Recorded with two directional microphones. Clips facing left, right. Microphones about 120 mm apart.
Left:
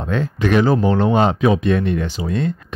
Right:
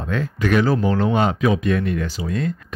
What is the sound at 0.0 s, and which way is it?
Speech, 25° left (ahead or behind).